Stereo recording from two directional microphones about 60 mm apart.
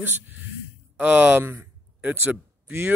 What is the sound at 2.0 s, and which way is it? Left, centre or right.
Speech, right.